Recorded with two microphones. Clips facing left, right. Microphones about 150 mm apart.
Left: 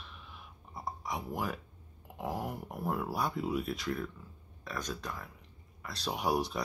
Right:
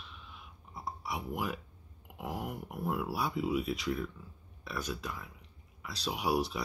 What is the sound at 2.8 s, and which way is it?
Speech, 5° right (ahead or behind).